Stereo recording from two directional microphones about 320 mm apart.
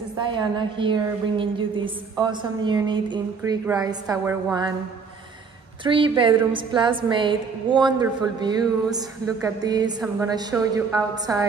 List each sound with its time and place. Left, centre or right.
0.2 s a woman's voice: centre
5.9 s a woman's voice: centre